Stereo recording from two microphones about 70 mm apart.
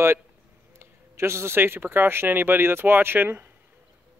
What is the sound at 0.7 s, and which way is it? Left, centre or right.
A man's voice, right.